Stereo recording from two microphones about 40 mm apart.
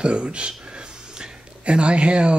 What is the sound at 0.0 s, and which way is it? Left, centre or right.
Speech, right.